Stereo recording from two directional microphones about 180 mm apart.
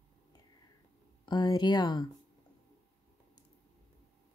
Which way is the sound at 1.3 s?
25° left (ahead or behind).